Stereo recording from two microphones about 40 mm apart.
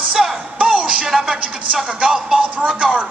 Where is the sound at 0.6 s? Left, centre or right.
Right.